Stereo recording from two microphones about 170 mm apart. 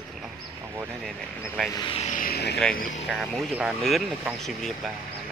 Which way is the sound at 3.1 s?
Centre (ahead or behind).